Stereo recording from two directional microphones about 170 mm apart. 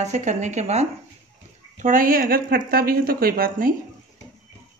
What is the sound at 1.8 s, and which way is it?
A woman's voice, 55° right (ahead or behind).